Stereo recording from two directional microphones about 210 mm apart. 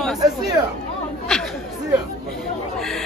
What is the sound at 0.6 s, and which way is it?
Speech, 20° right (ahead or behind).